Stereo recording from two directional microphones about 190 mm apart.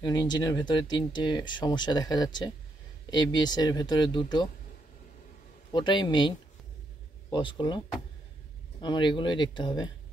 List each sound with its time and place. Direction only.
0.0 s speech: 20° left (ahead or behind)
5.7 s speech: 25° left (ahead or behind)
8.8 s speech: 25° left (ahead or behind)